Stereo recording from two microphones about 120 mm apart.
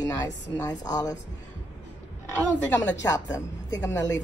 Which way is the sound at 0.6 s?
35° left (ahead or behind).